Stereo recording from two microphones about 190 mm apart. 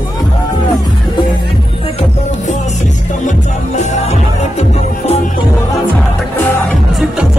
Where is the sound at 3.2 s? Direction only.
35° left (ahead or behind).